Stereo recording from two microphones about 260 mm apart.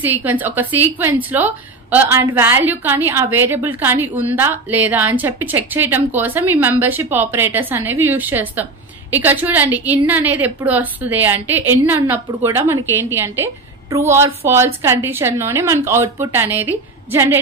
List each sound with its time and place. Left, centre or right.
0.0 s a woman's voice: centre